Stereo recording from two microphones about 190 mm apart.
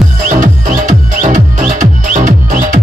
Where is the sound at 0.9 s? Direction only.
40° right (ahead or behind).